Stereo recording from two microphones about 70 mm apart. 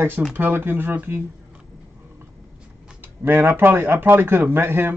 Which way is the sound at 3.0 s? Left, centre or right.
Right.